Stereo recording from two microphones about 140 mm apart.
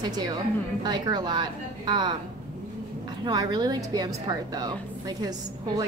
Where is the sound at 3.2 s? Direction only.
25° right (ahead or behind).